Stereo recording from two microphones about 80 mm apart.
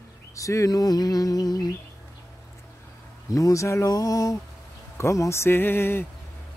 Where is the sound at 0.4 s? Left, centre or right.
Left.